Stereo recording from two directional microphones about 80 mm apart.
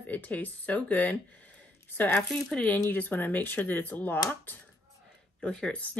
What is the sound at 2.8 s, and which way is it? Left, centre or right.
Speech, left.